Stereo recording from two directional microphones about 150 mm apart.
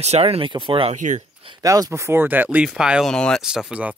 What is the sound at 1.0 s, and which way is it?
Speech, 55° right (ahead or behind).